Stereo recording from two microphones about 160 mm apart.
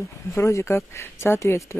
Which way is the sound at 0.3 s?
20° left (ahead or behind).